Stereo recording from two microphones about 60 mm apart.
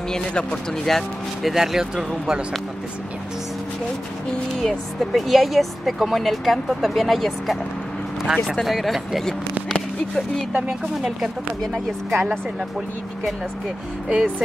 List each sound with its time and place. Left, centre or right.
0.1 s speech: centre
0.8 s speech: centre
1.5 s speech: centre
4.6 s speech: centre
9.7 s a sound: centre
10.5 s speech: centre
11.6 s speech: centre
14.0 s speech: centre